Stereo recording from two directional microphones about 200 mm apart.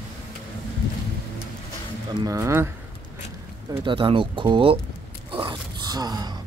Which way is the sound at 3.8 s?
25° right (ahead or behind).